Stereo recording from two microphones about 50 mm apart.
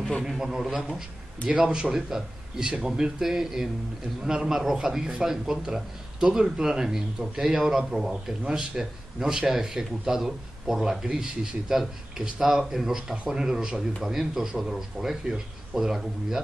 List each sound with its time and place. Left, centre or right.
0.4 s a man's voice: centre
1.5 s a man's voice: right